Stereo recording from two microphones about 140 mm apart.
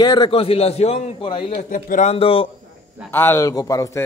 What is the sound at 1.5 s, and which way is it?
Speech, 70° left (ahead or behind).